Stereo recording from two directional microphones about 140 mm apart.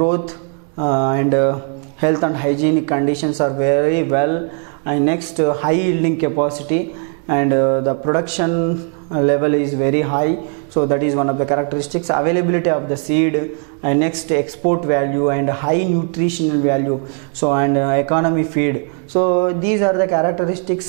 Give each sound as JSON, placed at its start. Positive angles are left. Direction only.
{"t": 0.7, "sound": "a man's voice", "side_deg": -5}
{"t": 17.4, "sound": "a man's voice", "side_deg": -10}